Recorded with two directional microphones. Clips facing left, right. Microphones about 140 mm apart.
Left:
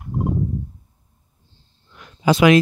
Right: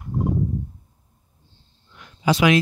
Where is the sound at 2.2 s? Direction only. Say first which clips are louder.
Left 4 dB; 50° left (ahead or behind).